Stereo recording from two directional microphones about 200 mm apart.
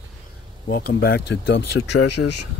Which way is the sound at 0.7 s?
50° left (ahead or behind).